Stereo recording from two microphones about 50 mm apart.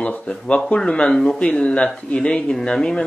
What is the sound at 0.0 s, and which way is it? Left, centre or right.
Speech, left.